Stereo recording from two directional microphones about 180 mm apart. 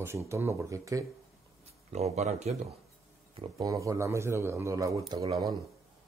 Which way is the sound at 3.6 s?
15° right (ahead or behind).